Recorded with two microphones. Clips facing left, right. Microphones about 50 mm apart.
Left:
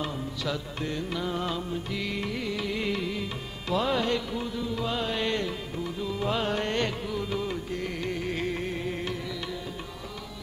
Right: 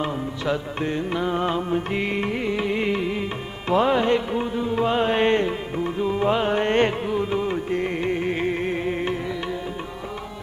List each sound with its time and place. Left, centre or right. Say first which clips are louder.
0.0 s music: right 6 dB; right